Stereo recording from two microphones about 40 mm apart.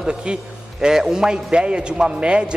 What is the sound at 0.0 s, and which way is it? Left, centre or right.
A man's voice, right.